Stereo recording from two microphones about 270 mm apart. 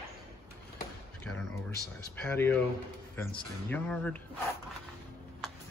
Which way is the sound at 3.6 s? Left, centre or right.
Centre.